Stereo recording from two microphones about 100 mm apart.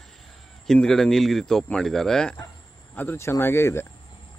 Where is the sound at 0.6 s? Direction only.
5° left (ahead or behind).